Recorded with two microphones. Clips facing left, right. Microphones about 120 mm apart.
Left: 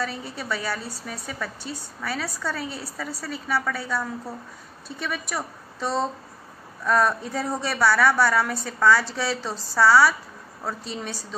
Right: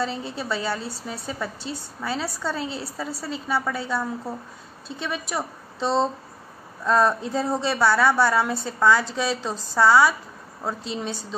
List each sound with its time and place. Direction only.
0.0 s a woman's voice: 25° right (ahead or behind)